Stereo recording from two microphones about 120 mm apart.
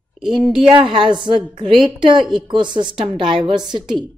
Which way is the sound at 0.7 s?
40° right (ahead or behind).